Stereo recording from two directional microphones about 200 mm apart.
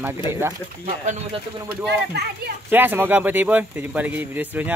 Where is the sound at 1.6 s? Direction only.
55° right (ahead or behind).